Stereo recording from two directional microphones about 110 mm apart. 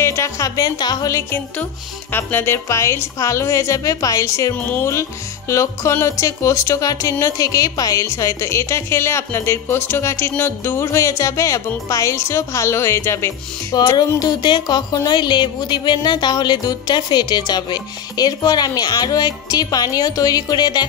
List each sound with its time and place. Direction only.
0.0 s music: 25° left (ahead or behind)
2.1 s speech: 20° left (ahead or behind)
4.6 s speech: 15° left (ahead or behind)
13.7 s music: 40° left (ahead or behind)